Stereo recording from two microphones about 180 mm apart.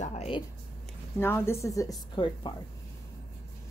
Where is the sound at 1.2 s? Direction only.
15° left (ahead or behind).